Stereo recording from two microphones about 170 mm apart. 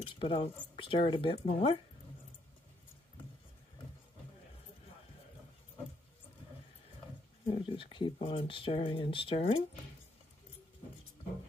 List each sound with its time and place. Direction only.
0.0 s speech: 30° left (ahead or behind)
7.4 s speech: 35° left (ahead or behind)